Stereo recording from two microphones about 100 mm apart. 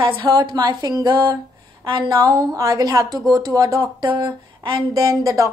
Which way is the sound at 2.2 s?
40° right (ahead or behind).